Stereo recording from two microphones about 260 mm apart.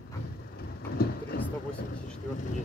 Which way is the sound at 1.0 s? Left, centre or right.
Left.